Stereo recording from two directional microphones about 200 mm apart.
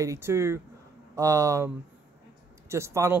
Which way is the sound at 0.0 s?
15° right (ahead or behind).